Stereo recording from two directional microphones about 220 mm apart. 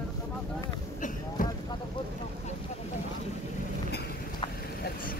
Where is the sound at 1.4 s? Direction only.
40° left (ahead or behind).